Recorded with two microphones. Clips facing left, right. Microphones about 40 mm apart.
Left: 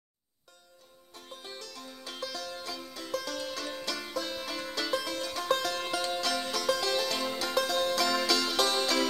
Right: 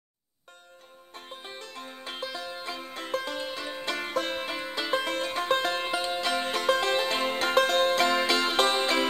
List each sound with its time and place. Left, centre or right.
1.1 s music: right
3.9 s music: right
5.0 s music: right